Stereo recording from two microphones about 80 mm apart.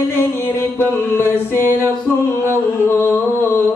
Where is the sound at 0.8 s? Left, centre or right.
Left.